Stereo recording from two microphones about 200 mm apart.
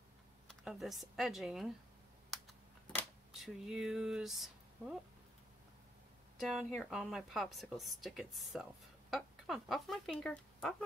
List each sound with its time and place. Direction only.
0.5 s a woman's voice: centre (ahead or behind)
3.0 s speech: centre (ahead or behind)
6.4 s a woman's voice: centre (ahead or behind)